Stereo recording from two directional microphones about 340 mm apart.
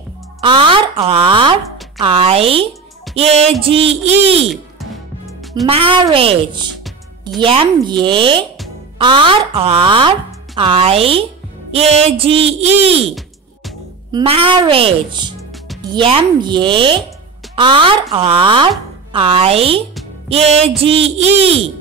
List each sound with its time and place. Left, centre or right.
0.4 s speech: centre
4.5 s music: centre
5.7 s speech: centre
14.1 s speech: centre